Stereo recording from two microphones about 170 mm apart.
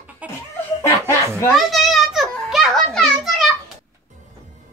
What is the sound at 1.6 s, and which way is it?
Children playing, centre (ahead or behind).